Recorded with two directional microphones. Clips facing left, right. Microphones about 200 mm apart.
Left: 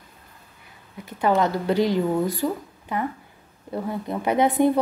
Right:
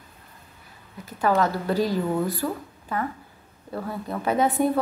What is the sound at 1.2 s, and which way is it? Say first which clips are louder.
Speech: left 1 dB; 20° left (ahead or behind).